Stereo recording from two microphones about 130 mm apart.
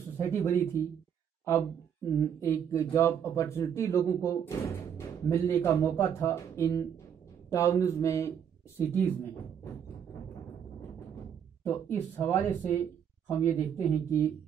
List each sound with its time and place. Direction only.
0.2 s speech: 20° left (ahead or behind)
11.6 s speech: 15° left (ahead or behind)